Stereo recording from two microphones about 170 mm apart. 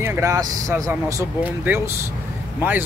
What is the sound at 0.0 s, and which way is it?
Speech, 15° right (ahead or behind).